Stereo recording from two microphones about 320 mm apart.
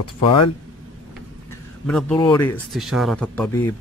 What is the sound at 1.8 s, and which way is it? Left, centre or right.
Speech, centre.